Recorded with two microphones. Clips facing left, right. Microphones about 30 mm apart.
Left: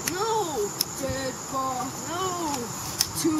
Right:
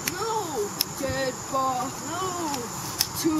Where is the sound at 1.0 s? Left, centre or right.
Centre.